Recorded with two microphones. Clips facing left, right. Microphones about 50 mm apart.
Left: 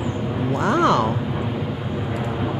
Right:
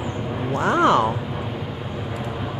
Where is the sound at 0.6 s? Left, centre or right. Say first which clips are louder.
Right 1 dB; centre.